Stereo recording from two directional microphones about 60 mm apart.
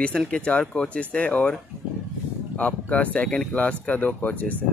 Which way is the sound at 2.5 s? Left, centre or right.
Left.